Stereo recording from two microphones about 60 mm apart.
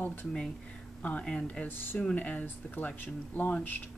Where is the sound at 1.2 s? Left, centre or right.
Centre.